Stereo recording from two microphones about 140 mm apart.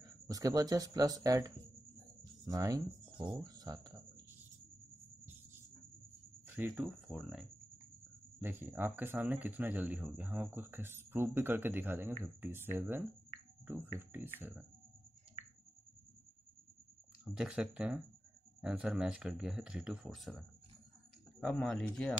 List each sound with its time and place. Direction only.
0.3 s speech: 25° right (ahead or behind)
6.4 s cricket: 15° right (ahead or behind)
6.7 s speech: 5° right (ahead or behind)
8.4 s speech: 15° right (ahead or behind)
17.2 s speech: 10° right (ahead or behind)